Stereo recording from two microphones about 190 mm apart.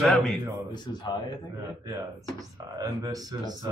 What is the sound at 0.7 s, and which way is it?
Speech, 20° left (ahead or behind).